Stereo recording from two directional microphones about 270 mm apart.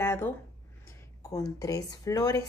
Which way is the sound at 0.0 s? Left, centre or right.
Centre.